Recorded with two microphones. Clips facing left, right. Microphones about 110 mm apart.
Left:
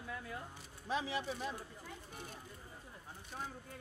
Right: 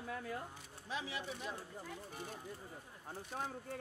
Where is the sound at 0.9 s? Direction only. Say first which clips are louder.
Left 5 dB; 35° left (ahead or behind).